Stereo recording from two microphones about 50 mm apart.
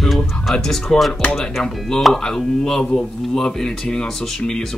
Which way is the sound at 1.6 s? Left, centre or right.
Centre.